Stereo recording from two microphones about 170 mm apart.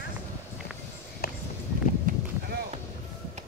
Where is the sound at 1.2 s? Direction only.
65° left (ahead or behind).